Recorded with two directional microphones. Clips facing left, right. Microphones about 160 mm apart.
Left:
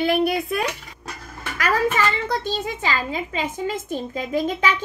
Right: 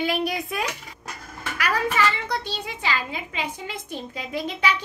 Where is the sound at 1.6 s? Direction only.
45° left (ahead or behind).